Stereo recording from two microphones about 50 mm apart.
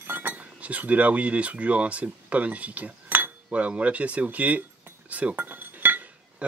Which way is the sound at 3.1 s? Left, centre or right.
Right.